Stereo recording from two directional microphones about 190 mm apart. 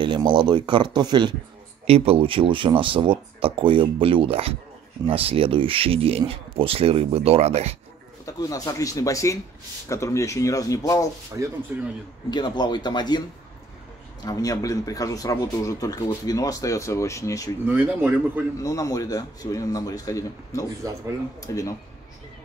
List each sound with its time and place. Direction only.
0.0 s speech: 25° right (ahead or behind)
8.3 s a man's voice: 20° left (ahead or behind)
11.7 s speech: 10° right (ahead or behind)
12.3 s speech: 20° left (ahead or behind)
14.2 s a man's voice: 20° left (ahead or behind)
17.6 s speech: 10° right (ahead or behind)
18.6 s a man's voice: 15° left (ahead or behind)